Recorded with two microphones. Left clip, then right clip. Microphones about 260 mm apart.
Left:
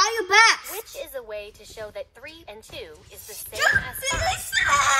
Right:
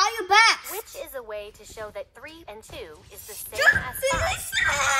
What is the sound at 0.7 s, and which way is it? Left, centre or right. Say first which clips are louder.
Speech: left 1 dB; centre.